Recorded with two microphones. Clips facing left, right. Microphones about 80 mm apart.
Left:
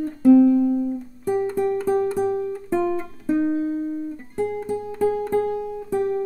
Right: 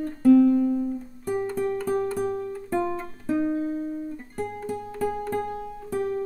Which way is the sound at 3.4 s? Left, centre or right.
Left.